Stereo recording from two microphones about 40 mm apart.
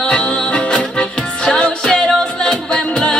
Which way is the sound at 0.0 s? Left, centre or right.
Left.